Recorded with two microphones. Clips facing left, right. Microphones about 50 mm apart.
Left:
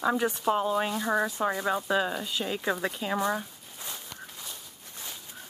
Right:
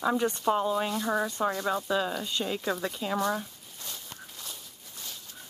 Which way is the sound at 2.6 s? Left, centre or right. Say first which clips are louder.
Left 1 dB; centre.